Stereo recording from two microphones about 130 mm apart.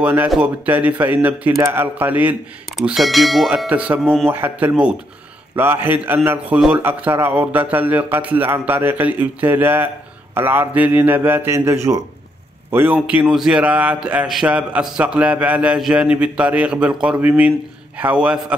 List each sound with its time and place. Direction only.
0.0 s a man's voice: 15° right (ahead or behind)
2.8 s a man's voice: centre (ahead or behind)